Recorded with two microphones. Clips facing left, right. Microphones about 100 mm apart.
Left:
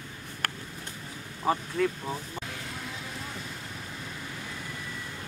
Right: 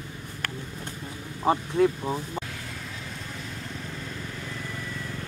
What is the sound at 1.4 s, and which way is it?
Speech, 20° right (ahead or behind).